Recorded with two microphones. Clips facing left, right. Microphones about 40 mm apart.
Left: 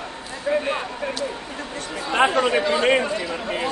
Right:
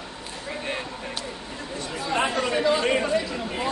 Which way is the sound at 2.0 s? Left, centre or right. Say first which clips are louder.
Left 6 dB; left.